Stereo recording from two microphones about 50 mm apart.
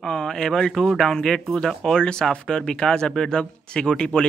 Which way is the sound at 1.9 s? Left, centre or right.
Centre.